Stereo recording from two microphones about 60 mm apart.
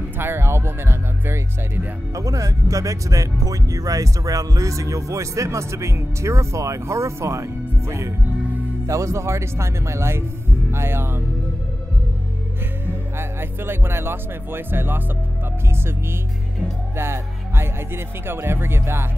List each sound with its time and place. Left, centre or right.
0.2 s music: right
2.1 s speech: right
12.8 s speech: right
16.9 s speech: right